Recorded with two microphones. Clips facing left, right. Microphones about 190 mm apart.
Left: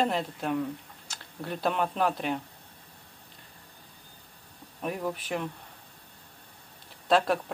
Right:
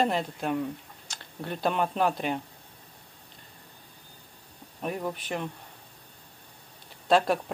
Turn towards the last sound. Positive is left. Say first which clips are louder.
# right 1 dB
turn(degrees=0)  # may be behind; listen again after turning